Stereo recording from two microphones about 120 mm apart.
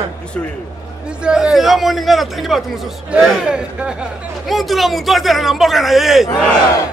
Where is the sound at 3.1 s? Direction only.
5° right (ahead or behind).